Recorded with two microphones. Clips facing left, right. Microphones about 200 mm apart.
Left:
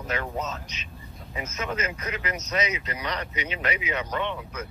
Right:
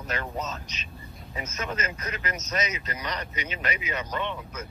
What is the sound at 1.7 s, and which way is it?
Speech, 10° left (ahead or behind).